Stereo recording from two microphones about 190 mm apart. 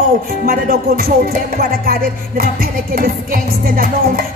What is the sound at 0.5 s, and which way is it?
Speech, 50° right (ahead or behind).